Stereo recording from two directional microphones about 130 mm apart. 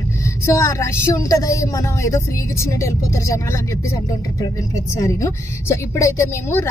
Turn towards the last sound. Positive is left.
turn(degrees=20)  # may be behind; listen again after turning